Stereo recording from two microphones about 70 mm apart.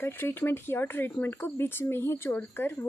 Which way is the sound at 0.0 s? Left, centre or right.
Left.